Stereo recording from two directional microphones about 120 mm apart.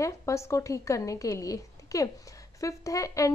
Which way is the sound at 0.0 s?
25° left (ahead or behind).